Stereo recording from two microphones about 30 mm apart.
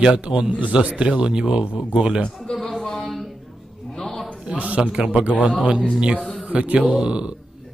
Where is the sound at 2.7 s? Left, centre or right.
Centre.